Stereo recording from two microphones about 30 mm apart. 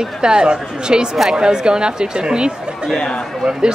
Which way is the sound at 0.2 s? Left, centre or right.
Right.